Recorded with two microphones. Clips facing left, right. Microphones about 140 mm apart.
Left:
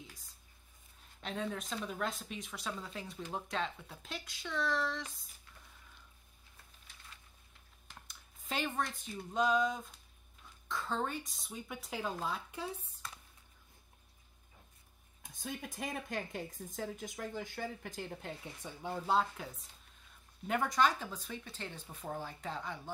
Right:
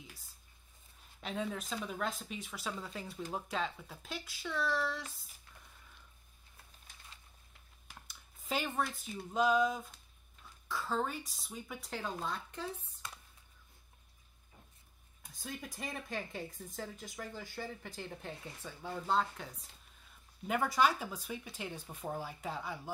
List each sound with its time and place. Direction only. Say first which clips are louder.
1.2 s speech: right 1 dB; centre (ahead or behind)
6.9 s a sound: even; 45° right (ahead or behind)
7.9 s speech: even; centre (ahead or behind)
15.4 s speech: left 2 dB; 20° left (ahead or behind)
15.8 s speech: left 2 dB; 50° left (ahead or behind)
18.6 s speech: left 4 dB; 20° left (ahead or behind)
19.0 s speech: left 1 dB; 5° left (ahead or behind)